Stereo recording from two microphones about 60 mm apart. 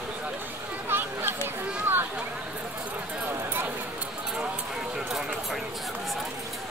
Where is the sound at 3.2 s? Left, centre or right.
Right.